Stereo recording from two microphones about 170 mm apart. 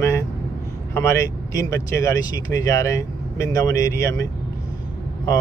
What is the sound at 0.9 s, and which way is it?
Speech, 15° left (ahead or behind).